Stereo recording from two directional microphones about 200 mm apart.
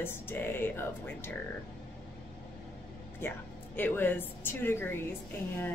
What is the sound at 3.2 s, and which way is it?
A woman's voice, 10° left (ahead or behind).